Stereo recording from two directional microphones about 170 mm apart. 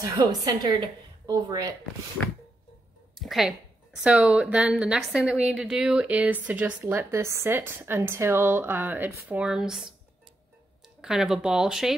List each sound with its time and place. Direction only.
0.0 s a woman's voice: 20° right (ahead or behind)
3.2 s a woman's voice: centre (ahead or behind)
11.0 s a woman's voice: 5° right (ahead or behind)